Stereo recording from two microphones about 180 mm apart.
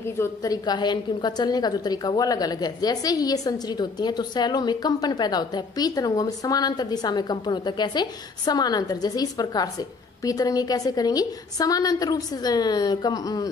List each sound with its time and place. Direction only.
0.0 s a woman's voice: 15° left (ahead or behind)